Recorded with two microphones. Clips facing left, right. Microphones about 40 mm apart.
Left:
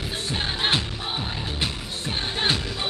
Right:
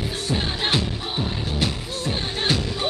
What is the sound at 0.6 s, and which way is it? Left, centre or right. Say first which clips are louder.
Music: right 1 dB; left.